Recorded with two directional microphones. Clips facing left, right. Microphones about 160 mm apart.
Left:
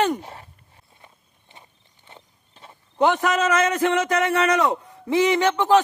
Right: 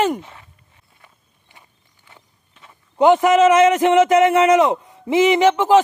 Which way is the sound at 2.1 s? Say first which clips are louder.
Left 3 dB; 30° left (ahead or behind).